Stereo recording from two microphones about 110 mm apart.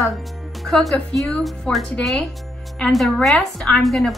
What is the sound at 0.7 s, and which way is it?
A woman's voice, 5° left (ahead or behind).